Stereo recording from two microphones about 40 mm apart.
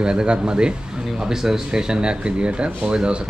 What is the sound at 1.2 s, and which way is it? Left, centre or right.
Speech, centre.